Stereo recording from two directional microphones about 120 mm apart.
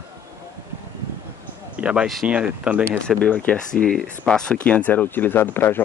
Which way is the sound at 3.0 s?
10° left (ahead or behind).